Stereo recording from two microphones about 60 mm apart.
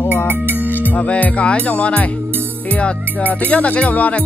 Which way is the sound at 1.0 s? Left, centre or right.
Left.